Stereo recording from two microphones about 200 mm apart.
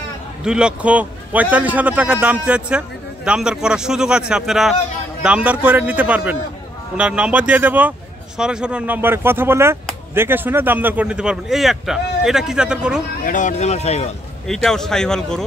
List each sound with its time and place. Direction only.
0.4 s a man's voice: 5° right (ahead or behind)
13.2 s speech: 40° left (ahead or behind)
14.5 s a man's voice: centre (ahead or behind)